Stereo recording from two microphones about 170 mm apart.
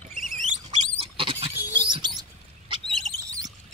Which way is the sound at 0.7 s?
35° right (ahead or behind).